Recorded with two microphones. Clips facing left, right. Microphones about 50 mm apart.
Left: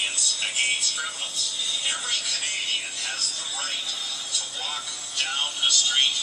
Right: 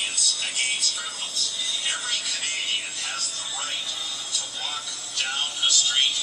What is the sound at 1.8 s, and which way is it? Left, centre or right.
Music, centre.